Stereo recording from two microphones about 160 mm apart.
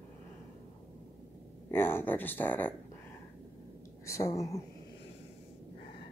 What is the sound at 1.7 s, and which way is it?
Speech, 15° left (ahead or behind).